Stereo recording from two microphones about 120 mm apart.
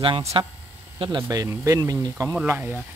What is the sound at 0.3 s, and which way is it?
Speech, 45° right (ahead or behind).